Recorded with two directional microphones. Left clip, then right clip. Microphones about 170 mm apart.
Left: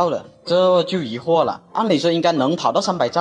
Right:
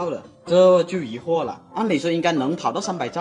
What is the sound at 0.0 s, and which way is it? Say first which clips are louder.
A man's voice: left 7 dB; 35° left (ahead or behind).